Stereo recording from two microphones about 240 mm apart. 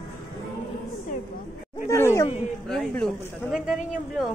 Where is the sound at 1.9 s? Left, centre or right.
Centre.